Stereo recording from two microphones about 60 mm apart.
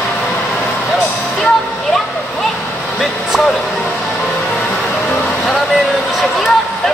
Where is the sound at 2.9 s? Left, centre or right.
Centre.